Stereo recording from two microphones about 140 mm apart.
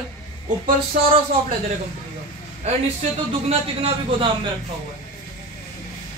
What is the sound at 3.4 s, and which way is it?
Speech, 45° right (ahead or behind).